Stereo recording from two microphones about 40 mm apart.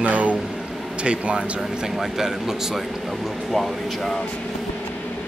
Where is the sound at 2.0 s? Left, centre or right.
Centre.